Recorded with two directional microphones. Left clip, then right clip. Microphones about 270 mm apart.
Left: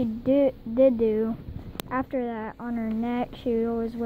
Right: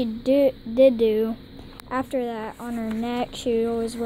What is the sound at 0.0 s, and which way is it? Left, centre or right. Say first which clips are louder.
A woman's voice: right 3 dB; centre.